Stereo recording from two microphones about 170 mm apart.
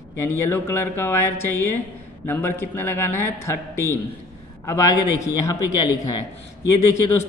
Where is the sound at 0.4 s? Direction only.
15° left (ahead or behind).